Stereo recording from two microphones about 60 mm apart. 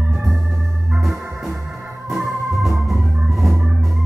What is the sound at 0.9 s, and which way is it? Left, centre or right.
Organ, centre.